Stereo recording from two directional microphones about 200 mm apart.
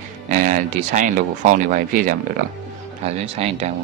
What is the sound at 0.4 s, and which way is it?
Speech, 40° right (ahead or behind).